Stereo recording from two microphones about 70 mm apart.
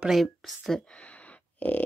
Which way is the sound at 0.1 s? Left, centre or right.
Centre.